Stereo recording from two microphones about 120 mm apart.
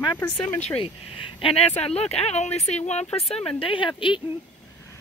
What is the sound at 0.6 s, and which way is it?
Speech, 50° left (ahead or behind).